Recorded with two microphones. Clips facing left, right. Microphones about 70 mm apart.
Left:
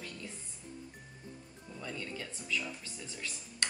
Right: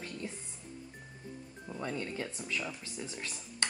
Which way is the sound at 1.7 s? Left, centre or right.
Right.